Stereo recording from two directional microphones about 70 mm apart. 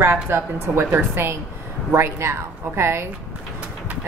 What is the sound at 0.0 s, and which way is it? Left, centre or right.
A woman's voice, right.